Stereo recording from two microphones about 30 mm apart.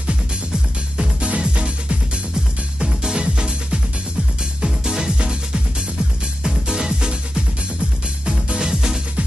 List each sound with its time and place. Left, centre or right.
1.2 s music: right
2.3 s music: right
4.6 s music: centre
5.2 s music: right
6.4 s music: centre
6.9 s music: right
8.5 s music: centre